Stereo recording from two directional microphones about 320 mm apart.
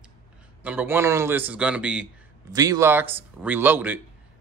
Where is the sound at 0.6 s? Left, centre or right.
Centre.